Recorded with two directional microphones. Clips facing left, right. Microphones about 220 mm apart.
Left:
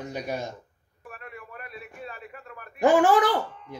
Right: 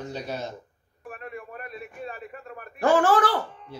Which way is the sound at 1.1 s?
30° right (ahead or behind).